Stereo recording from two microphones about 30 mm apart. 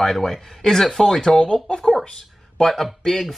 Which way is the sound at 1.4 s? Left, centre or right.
Left.